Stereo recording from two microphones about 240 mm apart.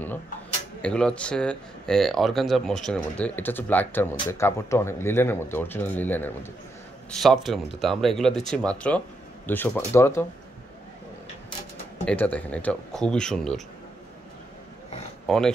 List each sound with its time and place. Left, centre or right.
0.8 s speech: centre
12.1 s speech: centre
15.2 s speech: centre